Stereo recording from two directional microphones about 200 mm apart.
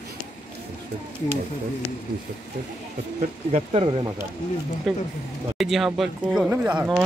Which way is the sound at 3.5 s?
25° right (ahead or behind).